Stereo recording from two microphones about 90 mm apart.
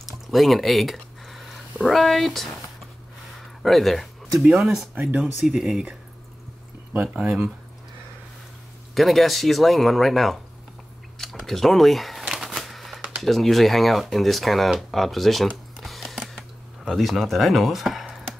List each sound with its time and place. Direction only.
0.0 s a sound: centre (ahead or behind)
3.3 s speech: centre (ahead or behind)
8.9 s speech: centre (ahead or behind)
11.1 s a sound: centre (ahead or behind)
13.2 s speech: centre (ahead or behind)
15.8 s music: centre (ahead or behind)
16.8 s speech: centre (ahead or behind)